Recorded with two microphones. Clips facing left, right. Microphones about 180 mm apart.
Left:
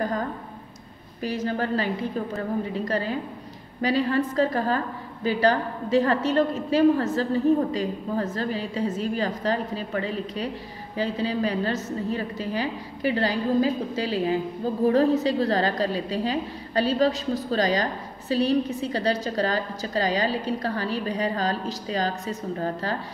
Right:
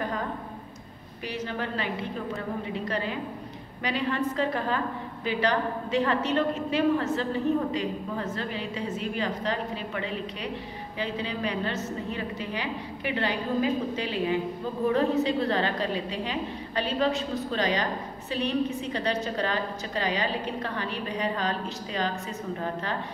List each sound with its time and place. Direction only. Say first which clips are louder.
1.2 s a woman's voice: left 6 dB; 40° left (ahead or behind)